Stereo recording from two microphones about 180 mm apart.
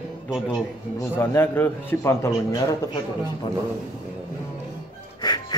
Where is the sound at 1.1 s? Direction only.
10° left (ahead or behind).